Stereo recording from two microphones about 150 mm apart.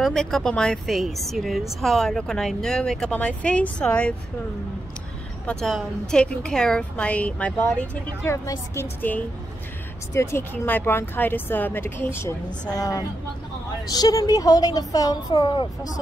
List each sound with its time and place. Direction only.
0.0 s speech: centre (ahead or behind)
5.5 s a woman's voice: 5° left (ahead or behind); by 15.9 s 30° left (ahead or behind)